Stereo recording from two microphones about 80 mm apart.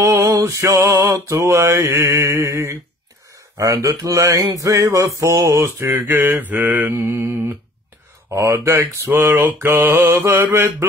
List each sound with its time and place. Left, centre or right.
0.0 s mantra: right
3.5 s speech: right
4.6 s mantra: right
5.9 s mantra: right
8.3 s mantra: right
9.1 s mantra: right